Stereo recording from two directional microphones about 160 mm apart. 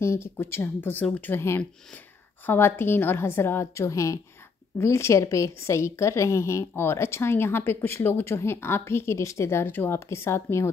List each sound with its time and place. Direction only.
0.0 s a woman's voice: 15° left (ahead or behind)